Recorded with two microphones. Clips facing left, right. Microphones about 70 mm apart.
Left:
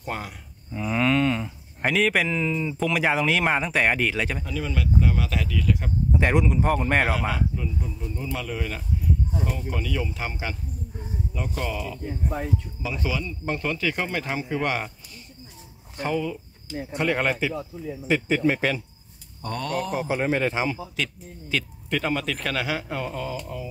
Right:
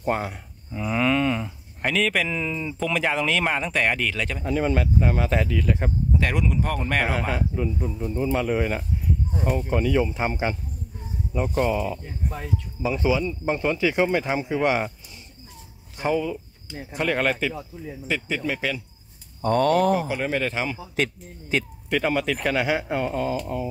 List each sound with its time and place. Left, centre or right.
0.0 s speech: right
0.7 s a sound: centre
1.8 s speech: centre
2.2 s a sound: centre
2.9 s speech: centre
4.5 s speech: right
6.1 s speech: left
7.2 s speech: right
16.0 s speech: centre
18.0 s speech: left
19.4 s speech: right
20.0 s speech: left
20.9 s speech: right
21.8 s speech: centre; by 23.7 s right